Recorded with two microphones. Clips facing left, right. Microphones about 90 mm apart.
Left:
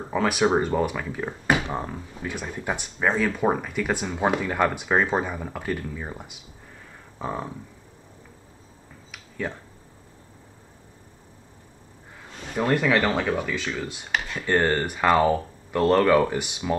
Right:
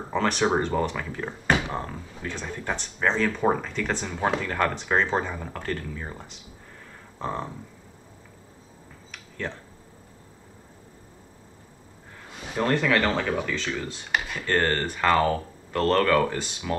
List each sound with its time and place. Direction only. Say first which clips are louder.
0.1 s speech: left 2 dB; 5° left (ahead or behind)
9.1 s a sound: left 2 dB; 10° left (ahead or behind)
12.3 s a sound: even; 10° right (ahead or behind)
12.5 s speech: left 1 dB; 10° left (ahead or behind)
13.3 s speech: left 1 dB; centre (ahead or behind)
14.1 s computer keyboard: even; 10° right (ahead or behind)
14.4 s speech: left 3 dB; 15° left (ahead or behind)